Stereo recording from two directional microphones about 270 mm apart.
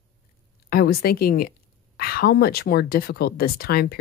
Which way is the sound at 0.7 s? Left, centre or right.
Left.